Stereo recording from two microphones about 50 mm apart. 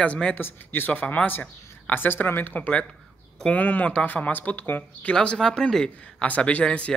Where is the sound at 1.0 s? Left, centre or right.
Left.